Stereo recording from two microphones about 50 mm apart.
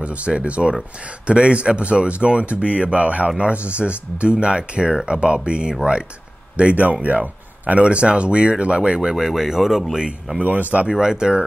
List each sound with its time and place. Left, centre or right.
0.0 s speech: right
9.1 s speech: centre
10.4 s speech: right
10.9 s speech: centre